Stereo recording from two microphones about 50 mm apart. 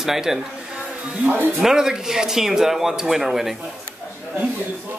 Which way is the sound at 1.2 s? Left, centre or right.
Right.